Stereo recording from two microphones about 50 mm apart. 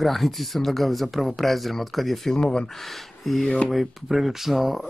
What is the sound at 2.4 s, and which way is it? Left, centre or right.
Speech, centre.